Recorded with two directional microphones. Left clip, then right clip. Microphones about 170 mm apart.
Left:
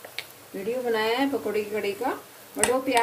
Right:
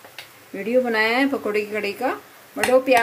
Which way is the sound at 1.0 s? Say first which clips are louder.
Right 5 dB; 40° right (ahead or behind).